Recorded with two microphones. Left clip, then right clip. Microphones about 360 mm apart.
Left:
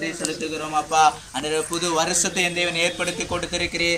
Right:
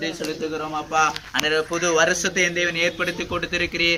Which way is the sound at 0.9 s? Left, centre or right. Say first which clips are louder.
Left 2 dB; centre.